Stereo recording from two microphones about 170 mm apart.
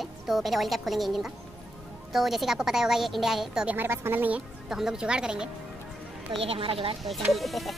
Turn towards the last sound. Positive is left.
turn(degrees=0)  # may be behind; listen again after turning